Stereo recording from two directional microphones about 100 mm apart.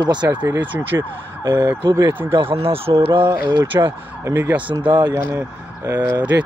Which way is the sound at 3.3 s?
30° right (ahead or behind).